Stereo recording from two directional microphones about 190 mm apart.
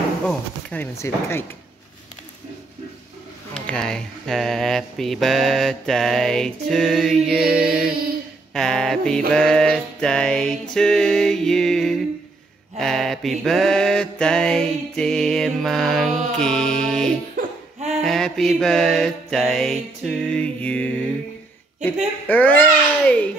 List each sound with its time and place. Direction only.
0.3 s speech: 5° left (ahead or behind)
3.5 s mantra: 5° left (ahead or behind)
17.4 s laughter: 35° right (ahead or behind)
18.0 s mantra: centre (ahead or behind)
20.0 s music: 5° left (ahead or behind)
22.3 s a child's voice: 10° left (ahead or behind)